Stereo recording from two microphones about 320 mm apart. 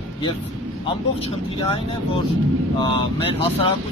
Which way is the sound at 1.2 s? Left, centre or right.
Centre.